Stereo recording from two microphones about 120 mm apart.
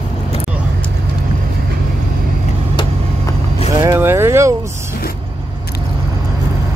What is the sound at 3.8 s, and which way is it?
Vehicle, 20° right (ahead or behind).